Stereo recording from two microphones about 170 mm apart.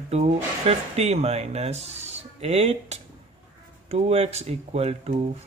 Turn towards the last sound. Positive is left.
turn(degrees=-40)  # may be behind; listen again after turning